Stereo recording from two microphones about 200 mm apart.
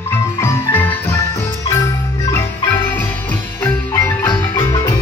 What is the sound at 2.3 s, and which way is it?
Marimba, 10° left (ahead or behind).